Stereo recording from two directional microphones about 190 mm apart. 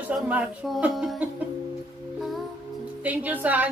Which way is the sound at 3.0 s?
10° right (ahead or behind).